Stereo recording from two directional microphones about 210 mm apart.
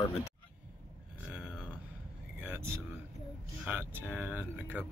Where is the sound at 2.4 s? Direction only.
10° right (ahead or behind).